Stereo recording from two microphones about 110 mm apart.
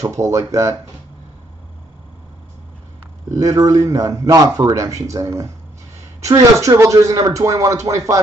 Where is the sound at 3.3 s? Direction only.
30° right (ahead or behind).